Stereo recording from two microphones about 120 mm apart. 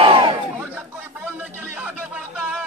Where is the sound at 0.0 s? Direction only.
45° right (ahead or behind).